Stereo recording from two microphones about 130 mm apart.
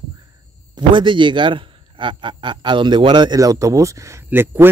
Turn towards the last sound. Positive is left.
turn(degrees=-15)  # may be behind; listen again after turning